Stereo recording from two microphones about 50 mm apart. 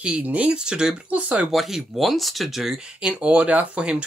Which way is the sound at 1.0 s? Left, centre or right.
Right.